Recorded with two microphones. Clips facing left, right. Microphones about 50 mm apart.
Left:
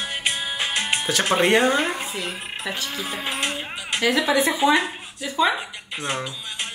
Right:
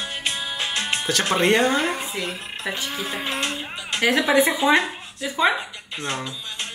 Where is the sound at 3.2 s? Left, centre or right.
Centre.